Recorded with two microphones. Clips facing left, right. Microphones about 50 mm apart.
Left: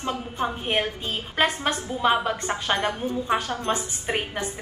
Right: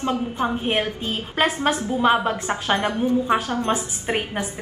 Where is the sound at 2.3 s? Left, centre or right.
Right.